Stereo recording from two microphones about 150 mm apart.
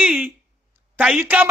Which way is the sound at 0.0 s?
5° right (ahead or behind).